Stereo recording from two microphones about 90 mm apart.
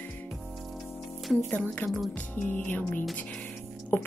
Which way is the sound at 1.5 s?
15° left (ahead or behind).